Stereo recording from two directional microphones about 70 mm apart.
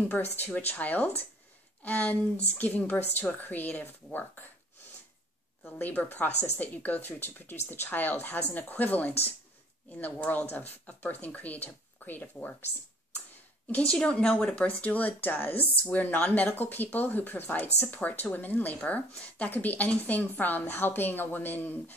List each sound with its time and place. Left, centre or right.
0.1 s speech: left
5.7 s speech: left
13.7 s speech: centre; by 21.9 s left